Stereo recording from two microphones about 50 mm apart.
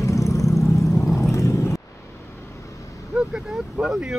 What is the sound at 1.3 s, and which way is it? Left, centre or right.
Vehicle, left.